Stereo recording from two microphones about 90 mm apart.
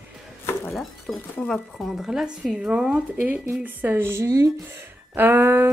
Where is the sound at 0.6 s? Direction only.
Centre (ahead or behind).